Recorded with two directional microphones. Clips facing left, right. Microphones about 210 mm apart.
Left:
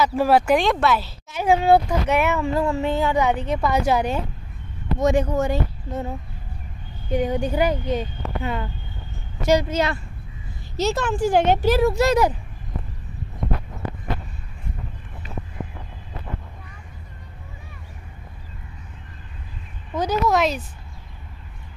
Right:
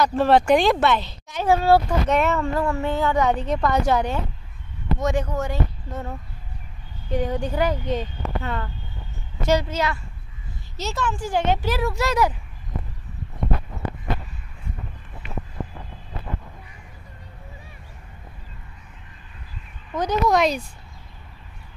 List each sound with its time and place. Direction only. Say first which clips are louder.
0.0 s speech: even; 10° left (ahead or behind)
10.8 s speech: left 6 dB; 70° left (ahead or behind)
11.8 s speech: left 4 dB; 25° left (ahead or behind)
19.9 s speech: even; 5° left (ahead or behind)